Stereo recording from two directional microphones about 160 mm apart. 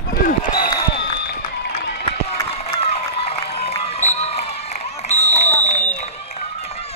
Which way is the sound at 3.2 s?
40° left (ahead or behind).